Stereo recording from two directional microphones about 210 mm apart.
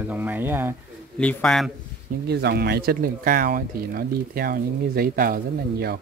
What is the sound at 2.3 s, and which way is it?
Speech, 50° right (ahead or behind).